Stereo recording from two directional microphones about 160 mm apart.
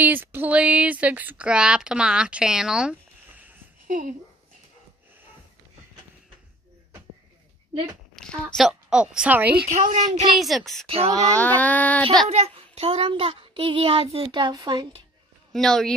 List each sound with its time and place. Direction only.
0.0 s speech: 10° right (ahead or behind)
3.8 s speech: 55° right (ahead or behind)
8.2 s a woman's voice: 5° left (ahead or behind)
9.8 s speech: 55° right (ahead or behind)
10.3 s a woman's voice: centre (ahead or behind)
12.3 s a child's voice: 40° right (ahead or behind); by 14.9 s 25° right (ahead or behind)
15.5 s a woman's voice: 5° left (ahead or behind)